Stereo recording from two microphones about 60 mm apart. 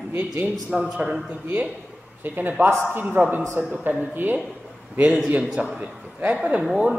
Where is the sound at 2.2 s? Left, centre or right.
Right.